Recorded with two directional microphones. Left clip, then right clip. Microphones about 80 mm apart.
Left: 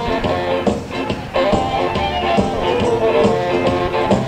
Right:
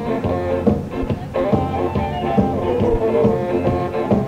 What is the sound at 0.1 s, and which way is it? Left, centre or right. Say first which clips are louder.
Music: left 1 dB; right.